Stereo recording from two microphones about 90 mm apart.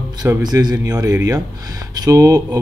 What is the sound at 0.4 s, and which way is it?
Speech, 50° right (ahead or behind).